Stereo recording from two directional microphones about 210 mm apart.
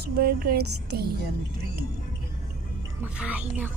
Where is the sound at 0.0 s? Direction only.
45° right (ahead or behind).